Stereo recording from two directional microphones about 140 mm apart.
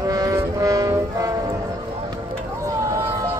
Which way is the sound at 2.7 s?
25° right (ahead or behind).